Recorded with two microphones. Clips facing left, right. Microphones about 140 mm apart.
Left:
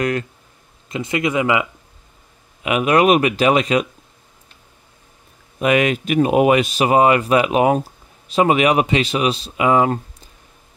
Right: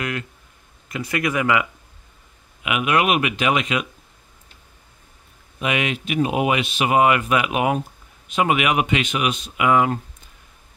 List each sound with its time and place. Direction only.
0.8 s speech: 25° left (ahead or behind)
2.6 s speech: 35° left (ahead or behind)
5.6 s speech: 45° left (ahead or behind)